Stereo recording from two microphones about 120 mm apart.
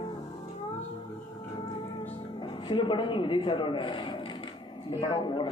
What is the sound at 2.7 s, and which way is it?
A man's voice, 45° left (ahead or behind).